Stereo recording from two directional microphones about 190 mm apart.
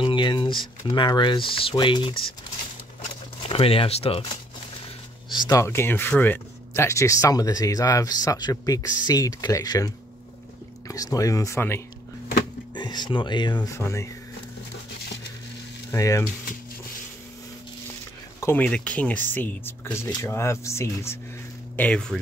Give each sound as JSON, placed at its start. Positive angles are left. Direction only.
{"t": 0.0, "sound": "speech", "side_deg": 25}
{"t": 3.4, "sound": "speech", "side_deg": 30}
{"t": 5.3, "sound": "speech", "side_deg": 20}
{"t": 15.9, "sound": "speech", "side_deg": 15}
{"t": 18.4, "sound": "speech", "side_deg": 10}